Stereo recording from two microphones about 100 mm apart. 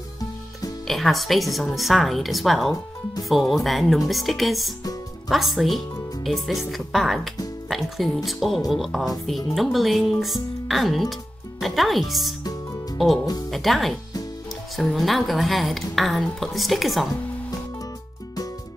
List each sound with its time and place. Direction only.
0.2 s music: 40° left (ahead or behind)
0.8 s speech: centre (ahead or behind)